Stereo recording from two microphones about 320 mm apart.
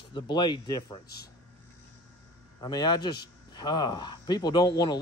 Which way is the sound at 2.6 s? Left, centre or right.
Centre.